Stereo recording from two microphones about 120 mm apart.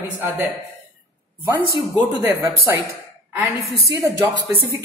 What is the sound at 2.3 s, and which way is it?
Speech, 15° right (ahead or behind).